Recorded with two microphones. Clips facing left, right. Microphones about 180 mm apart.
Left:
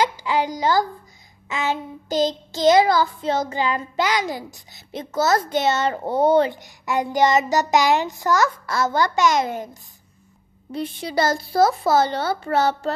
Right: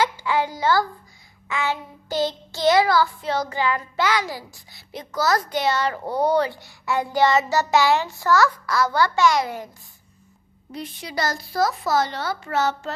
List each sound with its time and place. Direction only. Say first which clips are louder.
0.0 s a woman's voice: left 1 dB; 15° left (ahead or behind)
1.5 s child singing: left 1 dB; 20° left (ahead or behind)
10.7 s child singing: left 6 dB; 30° left (ahead or behind)